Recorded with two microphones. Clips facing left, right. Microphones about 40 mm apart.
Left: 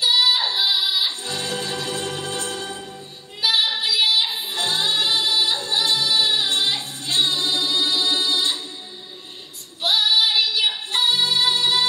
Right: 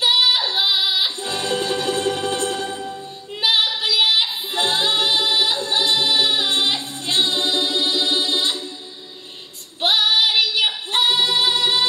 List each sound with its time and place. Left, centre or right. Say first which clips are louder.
0.0 s female singing: right 1 dB; right
0.5 s music: right 2 dB; right
3.3 s female singing: right 2 dB; right
3.8 s child singing: right 2 dB; right
4.5 s music: right 3 dB; right
9.8 s music: right 2 dB; right